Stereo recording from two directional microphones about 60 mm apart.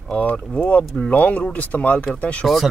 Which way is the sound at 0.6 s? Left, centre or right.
Left.